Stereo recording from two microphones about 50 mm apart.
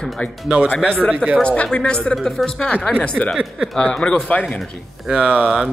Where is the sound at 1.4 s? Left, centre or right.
Left.